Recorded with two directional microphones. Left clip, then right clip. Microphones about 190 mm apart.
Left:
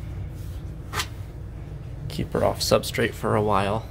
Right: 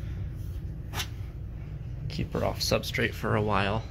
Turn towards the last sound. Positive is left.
turn(degrees=15)  # may be behind; listen again after turning